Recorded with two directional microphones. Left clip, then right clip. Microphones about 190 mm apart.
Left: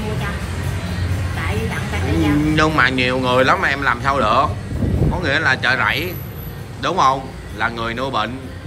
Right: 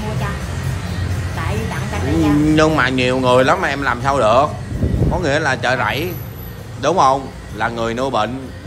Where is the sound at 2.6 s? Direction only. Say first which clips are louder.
Left 2 dB; 20° right (ahead or behind).